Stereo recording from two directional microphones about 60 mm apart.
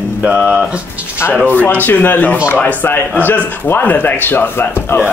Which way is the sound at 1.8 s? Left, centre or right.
Left.